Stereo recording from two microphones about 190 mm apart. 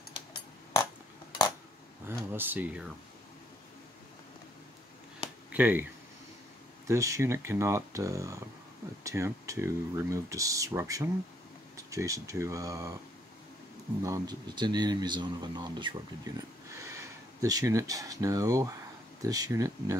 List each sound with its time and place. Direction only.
2.0 s speech: 10° right (ahead or behind)
5.5 s speech: 10° right (ahead or behind)
6.9 s speech: 15° right (ahead or behind)
14.0 s speech: 20° right (ahead or behind)